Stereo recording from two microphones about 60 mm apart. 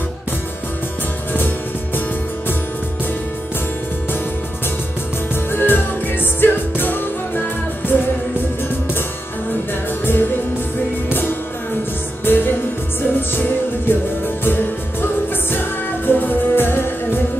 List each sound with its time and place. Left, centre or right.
5.3 s music: left
11.1 s music: left
16.1 s music: left